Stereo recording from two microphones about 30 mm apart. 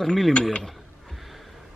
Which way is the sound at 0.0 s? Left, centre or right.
Centre.